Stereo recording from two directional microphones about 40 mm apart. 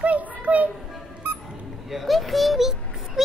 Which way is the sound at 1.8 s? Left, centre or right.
Centre.